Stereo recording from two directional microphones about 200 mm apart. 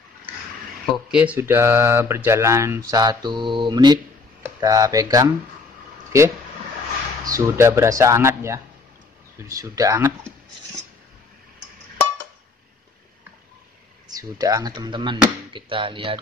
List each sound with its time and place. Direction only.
0.9 s speech: 5° right (ahead or behind)
14.0 s speech: 20° right (ahead or behind)